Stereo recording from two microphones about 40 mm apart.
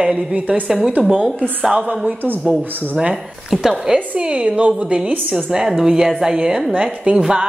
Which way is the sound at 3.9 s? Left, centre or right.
Right.